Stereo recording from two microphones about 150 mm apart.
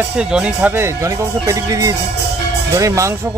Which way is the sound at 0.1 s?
5° right (ahead or behind).